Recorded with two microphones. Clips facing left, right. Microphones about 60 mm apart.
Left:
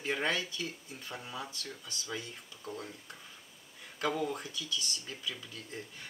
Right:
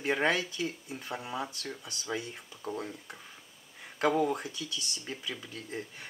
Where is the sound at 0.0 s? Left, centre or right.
Right.